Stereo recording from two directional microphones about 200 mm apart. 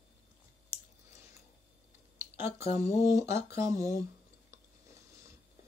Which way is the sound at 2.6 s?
30° left (ahead or behind).